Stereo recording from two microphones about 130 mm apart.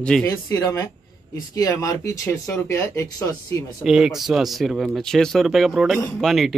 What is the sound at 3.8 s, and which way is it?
Speech, 5° right (ahead or behind).